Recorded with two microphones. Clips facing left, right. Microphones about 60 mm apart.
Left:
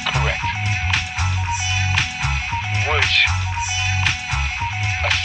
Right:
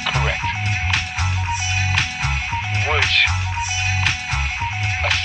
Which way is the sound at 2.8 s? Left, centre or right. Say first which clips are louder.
Even; centre.